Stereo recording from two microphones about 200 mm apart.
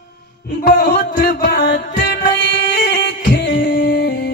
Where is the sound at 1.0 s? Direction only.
40° left (ahead or behind).